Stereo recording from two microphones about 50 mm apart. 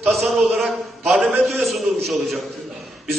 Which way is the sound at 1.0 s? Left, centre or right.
Centre.